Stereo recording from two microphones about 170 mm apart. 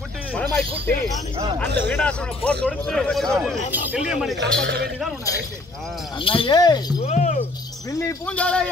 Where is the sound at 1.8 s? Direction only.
10° left (ahead or behind).